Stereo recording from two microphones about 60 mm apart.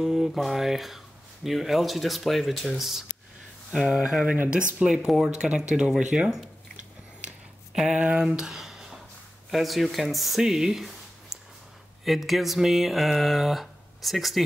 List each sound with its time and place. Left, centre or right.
0.0 s speech: centre
3.7 s speech: centre
4.8 s speech: centre
7.9 s speech: centre